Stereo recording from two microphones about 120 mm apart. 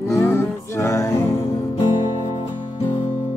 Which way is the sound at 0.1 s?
20° left (ahead or behind).